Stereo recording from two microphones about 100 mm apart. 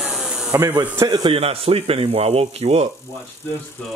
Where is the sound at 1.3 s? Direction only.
75° right (ahead or behind).